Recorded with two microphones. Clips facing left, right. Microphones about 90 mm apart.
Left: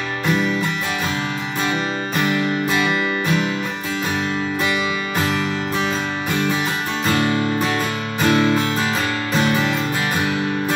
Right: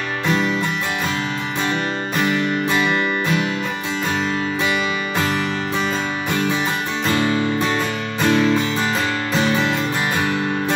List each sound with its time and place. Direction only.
2.2 s music: 5° left (ahead or behind)
5.2 s music: centre (ahead or behind)
8.2 s music: 5° left (ahead or behind)